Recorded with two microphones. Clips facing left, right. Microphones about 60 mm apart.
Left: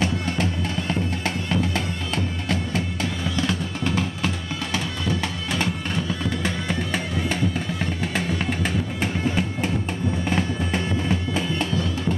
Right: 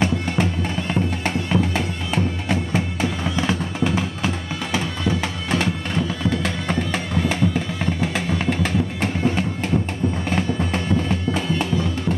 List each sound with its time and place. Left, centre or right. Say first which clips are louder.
0.0 s music: right 3 dB; centre
3.8 s music: right 3 dB; centre
4.7 s music: right 4 dB; right
6.9 s music: right 3 dB; centre